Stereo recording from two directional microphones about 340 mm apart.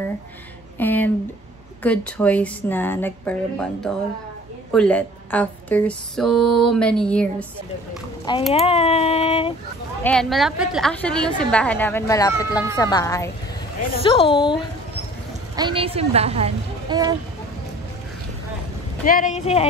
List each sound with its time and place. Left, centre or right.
0.7 s speech: centre
8.5 s speech: centre
10.0 s speech: centre
15.5 s a woman's voice: centre
19.0 s speech: left